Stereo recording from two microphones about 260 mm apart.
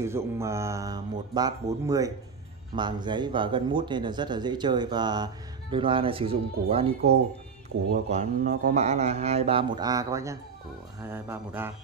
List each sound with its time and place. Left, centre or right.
0.0 s speech: centre
8.1 s speech: right; by 11.7 s centre